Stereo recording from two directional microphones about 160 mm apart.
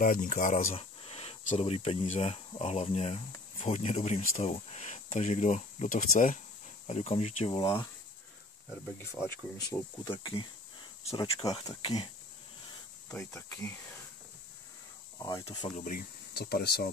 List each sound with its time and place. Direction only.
0.0 s speech: 60° left (ahead or behind)
0.7 s speech: 40° left (ahead or behind); by 6.4 s 55° left (ahead or behind)
6.9 s speech: 45° left (ahead or behind)
8.9 s speech: 15° left (ahead or behind)
10.0 s speech: 30° left (ahead or behind)
13.1 s speech: 10° left (ahead or behind)
15.1 s speech: 20° left (ahead or behind)
15.4 s speech: 40° left (ahead or behind)
15.8 s speech: 65° left (ahead or behind); by 16.9 s 80° left